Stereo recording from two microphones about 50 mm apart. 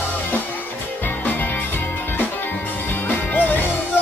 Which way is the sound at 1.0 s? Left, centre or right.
Left.